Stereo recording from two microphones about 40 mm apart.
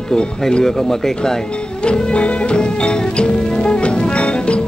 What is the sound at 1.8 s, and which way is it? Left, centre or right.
Music, left.